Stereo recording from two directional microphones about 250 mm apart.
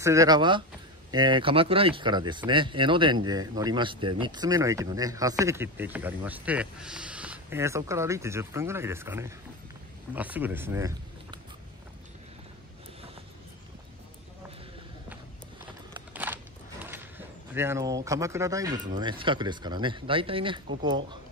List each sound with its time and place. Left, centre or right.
0.0 s speech: centre
16.1 s a sound: centre
17.6 s speech: centre